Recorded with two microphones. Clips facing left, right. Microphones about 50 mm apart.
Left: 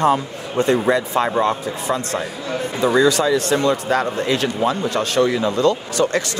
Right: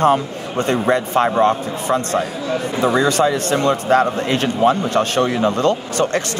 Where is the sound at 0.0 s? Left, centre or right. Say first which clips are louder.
Right 2 dB; right.